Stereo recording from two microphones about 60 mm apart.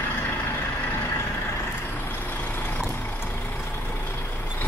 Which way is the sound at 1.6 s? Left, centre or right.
Left.